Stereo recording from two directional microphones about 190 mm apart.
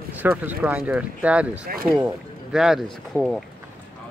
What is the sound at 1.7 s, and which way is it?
Speech, 50° right (ahead or behind).